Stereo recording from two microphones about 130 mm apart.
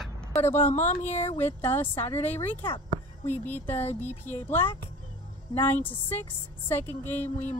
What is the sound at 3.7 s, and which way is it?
A woman's voice, 15° left (ahead or behind).